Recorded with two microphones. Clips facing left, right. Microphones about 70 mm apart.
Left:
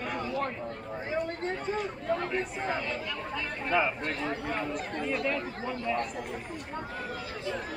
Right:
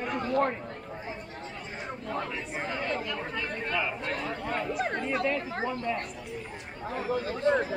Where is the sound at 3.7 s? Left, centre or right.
Centre.